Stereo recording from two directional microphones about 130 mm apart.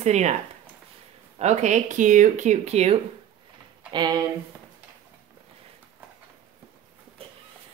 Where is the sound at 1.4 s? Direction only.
60° right (ahead or behind).